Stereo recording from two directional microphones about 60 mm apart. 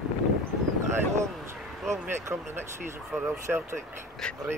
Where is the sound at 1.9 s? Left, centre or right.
Right.